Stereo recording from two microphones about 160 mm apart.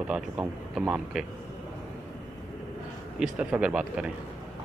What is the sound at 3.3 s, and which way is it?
Speech, 5° right (ahead or behind).